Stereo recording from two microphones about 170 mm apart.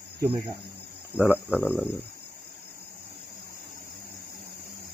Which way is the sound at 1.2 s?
10° right (ahead or behind).